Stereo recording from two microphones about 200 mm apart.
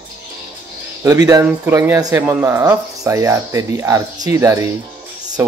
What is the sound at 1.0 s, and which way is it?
Speech, 15° right (ahead or behind).